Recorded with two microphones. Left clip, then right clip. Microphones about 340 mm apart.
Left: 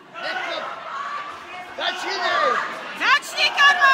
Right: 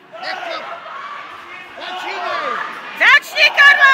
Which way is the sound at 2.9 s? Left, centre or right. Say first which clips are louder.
Right 8 dB; centre.